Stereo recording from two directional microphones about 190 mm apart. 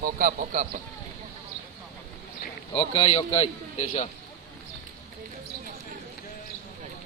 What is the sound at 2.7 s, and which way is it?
A man's voice, 25° left (ahead or behind).